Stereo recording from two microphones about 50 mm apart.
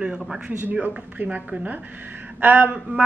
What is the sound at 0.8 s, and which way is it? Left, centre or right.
Speech, right.